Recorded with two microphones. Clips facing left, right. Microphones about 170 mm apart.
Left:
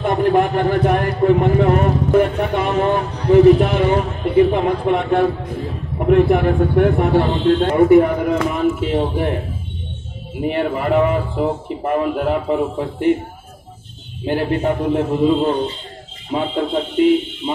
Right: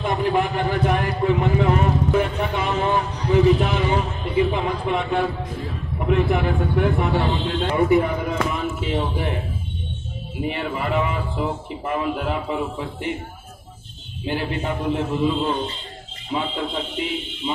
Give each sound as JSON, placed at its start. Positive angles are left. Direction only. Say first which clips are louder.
{"t": 0.0, "sound": "a man's voice", "louder": "left 6 dB", "side_deg": 50}
{"t": 10.4, "sound": "speech", "louder": "left 6 dB", "side_deg": 50}
{"t": 14.2, "sound": "speech", "louder": "left 7 dB", "side_deg": 50}